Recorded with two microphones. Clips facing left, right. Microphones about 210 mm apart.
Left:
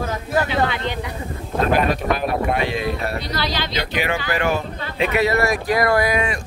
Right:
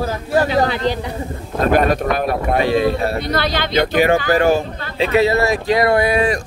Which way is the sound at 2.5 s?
35° right (ahead or behind).